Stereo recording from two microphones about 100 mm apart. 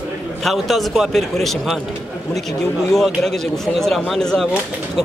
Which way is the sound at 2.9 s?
5° left (ahead or behind).